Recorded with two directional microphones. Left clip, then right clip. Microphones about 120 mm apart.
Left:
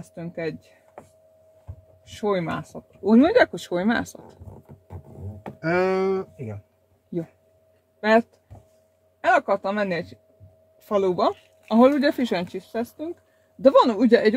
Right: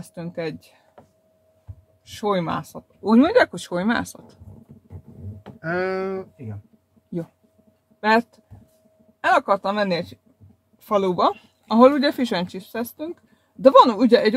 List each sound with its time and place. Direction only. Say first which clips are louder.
0.0 s speech: right 1 dB; 10° left (ahead or behind)
2.0 s speech: right 2 dB; 10° left (ahead or behind)
5.6 s a sound: left 3 dB; 45° left (ahead or behind)
9.2 s speech: right 1 dB; 15° left (ahead or behind)